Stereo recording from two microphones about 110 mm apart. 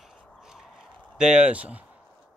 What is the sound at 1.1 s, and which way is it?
Speech, 10° right (ahead or behind).